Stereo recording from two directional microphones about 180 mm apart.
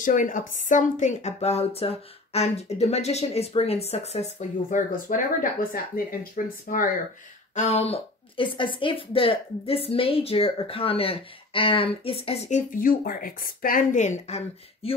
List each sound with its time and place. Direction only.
0.0 s a woman's voice: 45° left (ahead or behind)
7.5 s a woman's voice: 40° left (ahead or behind)